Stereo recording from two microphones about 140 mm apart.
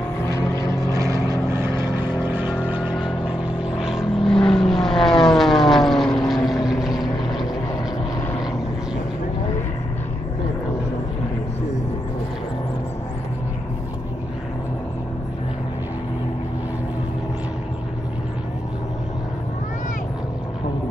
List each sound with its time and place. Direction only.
0.9 s vehicle: 20° right (ahead or behind); by 5.2 s 5° left (ahead or behind)
5.3 s aircraft: centre (ahead or behind)